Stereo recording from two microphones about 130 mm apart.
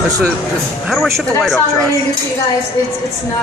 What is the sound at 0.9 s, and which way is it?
Speech, centre (ahead or behind).